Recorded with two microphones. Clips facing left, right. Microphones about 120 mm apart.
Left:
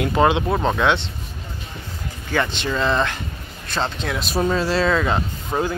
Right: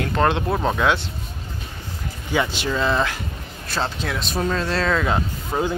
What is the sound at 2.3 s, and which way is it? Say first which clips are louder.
Speech: even; 10° right (ahead or behind).